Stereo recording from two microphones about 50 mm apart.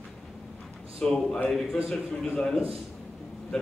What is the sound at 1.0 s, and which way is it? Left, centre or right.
Speech, centre.